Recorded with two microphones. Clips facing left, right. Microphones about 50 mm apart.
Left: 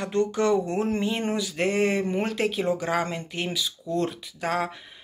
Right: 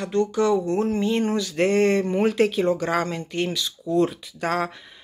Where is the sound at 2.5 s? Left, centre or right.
Centre.